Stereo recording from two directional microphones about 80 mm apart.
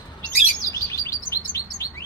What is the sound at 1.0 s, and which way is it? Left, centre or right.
Chirp, left.